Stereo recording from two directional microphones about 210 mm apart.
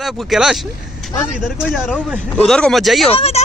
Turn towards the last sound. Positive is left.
turn(degrees=30)  # may be behind; listen again after turning